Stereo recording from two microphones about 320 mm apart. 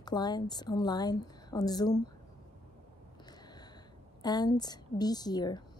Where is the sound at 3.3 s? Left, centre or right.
Centre.